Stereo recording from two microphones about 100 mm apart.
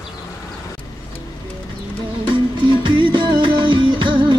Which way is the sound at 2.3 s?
55° right (ahead or behind).